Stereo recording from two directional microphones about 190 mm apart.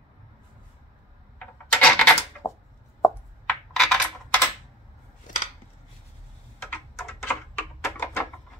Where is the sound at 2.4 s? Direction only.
15° left (ahead or behind).